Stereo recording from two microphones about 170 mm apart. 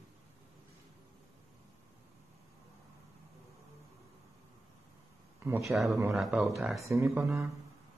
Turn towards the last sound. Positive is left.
turn(degrees=-15)  # may be behind; listen again after turning